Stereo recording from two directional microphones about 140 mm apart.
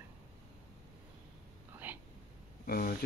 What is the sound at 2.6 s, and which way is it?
Speech, 90° left.